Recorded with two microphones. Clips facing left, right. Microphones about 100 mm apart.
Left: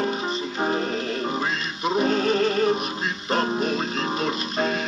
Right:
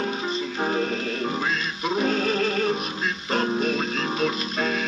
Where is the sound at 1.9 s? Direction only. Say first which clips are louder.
Left 2 dB; 20° left (ahead or behind).